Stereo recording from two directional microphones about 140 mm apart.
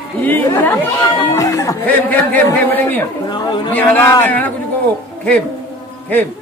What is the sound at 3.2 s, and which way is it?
Speech, 35° left (ahead or behind).